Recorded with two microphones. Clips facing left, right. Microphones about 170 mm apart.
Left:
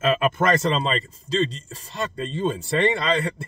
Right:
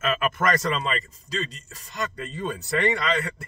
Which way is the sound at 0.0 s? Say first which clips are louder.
Left 4 dB; 30° left (ahead or behind).